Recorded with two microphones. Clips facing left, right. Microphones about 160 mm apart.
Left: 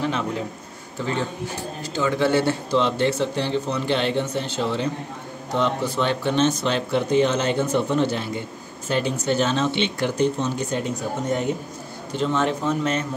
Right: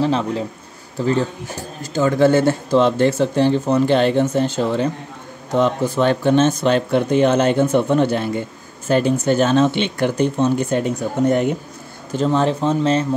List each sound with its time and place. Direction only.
0.0 s a man's voice: 35° right (ahead or behind); by 10.8 s 55° right (ahead or behind)
12.2 s speech: 35° right (ahead or behind)